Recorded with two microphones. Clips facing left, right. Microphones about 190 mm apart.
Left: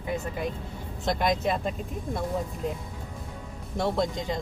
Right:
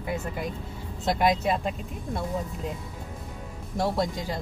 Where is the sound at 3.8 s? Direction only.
Centre (ahead or behind).